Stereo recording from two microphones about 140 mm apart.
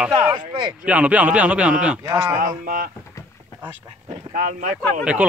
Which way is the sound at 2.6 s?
80° right.